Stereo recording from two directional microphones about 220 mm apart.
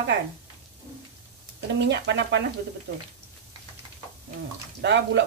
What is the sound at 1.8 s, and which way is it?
Speech, 50° right (ahead or behind).